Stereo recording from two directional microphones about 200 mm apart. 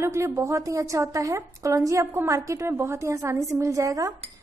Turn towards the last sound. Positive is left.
turn(degrees=-15)  # may be behind; listen again after turning